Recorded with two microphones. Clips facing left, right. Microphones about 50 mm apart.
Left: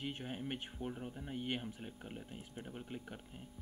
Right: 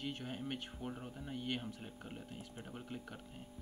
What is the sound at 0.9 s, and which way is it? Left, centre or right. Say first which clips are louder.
Speech: left 1 dB; centre.